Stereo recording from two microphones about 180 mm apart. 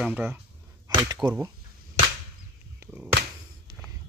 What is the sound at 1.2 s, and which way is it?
Speech, 25° right (ahead or behind).